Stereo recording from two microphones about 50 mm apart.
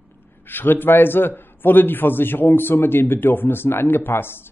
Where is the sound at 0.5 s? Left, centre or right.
Left.